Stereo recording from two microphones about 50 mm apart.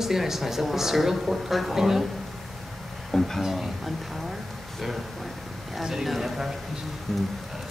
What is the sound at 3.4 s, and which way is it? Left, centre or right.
Speech, centre.